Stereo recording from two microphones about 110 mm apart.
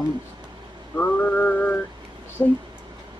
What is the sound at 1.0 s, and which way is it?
Mantra, 15° left (ahead or behind).